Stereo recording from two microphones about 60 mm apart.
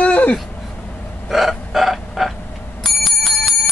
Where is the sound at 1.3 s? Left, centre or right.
Centre.